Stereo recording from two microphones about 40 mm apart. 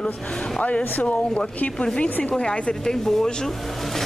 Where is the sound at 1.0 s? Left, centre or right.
Left.